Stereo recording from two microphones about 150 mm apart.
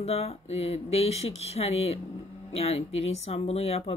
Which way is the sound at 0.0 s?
45° left (ahead or behind).